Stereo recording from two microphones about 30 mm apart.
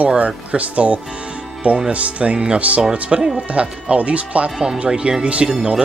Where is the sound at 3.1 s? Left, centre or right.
Right.